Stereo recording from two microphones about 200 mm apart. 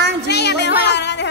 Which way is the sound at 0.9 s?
60° left (ahead or behind).